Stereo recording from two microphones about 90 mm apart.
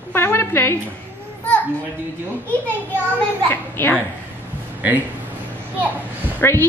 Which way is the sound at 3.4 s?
25° left (ahead or behind).